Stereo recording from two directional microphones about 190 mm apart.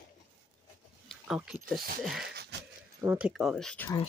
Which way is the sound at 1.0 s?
5° right (ahead or behind).